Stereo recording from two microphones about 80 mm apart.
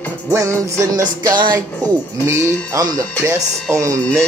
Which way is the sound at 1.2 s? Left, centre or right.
Right.